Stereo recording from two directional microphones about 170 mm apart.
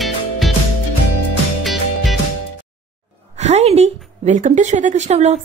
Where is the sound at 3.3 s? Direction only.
40° right (ahead or behind).